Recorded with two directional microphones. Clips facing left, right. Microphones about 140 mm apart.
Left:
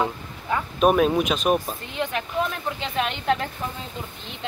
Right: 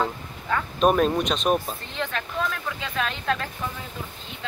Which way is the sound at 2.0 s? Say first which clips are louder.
Left 3 dB; 20° left (ahead or behind).